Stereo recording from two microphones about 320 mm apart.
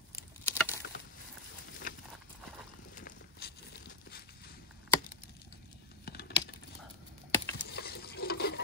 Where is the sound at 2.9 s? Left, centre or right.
Left.